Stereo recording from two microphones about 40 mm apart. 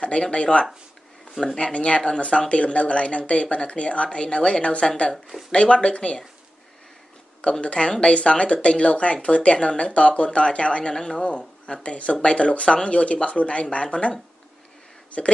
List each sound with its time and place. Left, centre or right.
0.0 s speech: left
7.6 s speech: left
11.0 s speech: centre; by 15.3 s left